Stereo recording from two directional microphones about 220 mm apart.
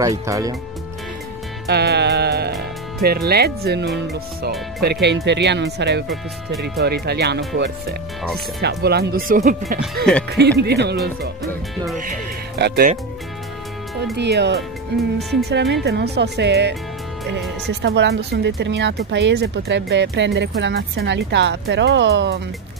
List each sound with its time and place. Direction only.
0.0 s speech: 15° right (ahead or behind)
1.7 s speech: 50° right (ahead or behind)
10.1 s speech: centre (ahead or behind)
10.6 s speech: 50° right (ahead or behind)
11.7 s speech: centre (ahead or behind)
12.5 s speech: 45° right (ahead or behind)
14.1 s speech: 50° right (ahead or behind)